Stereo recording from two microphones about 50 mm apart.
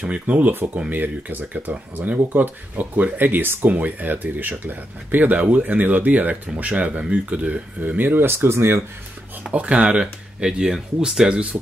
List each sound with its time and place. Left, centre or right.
0.0 s speech: right
8.5 s speech: right
9.5 s speech: right